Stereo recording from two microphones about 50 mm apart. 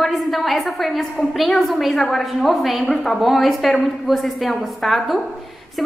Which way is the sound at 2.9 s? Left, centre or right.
Centre.